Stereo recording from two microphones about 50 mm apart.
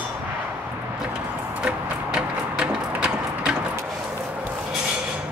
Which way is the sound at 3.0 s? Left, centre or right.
Right.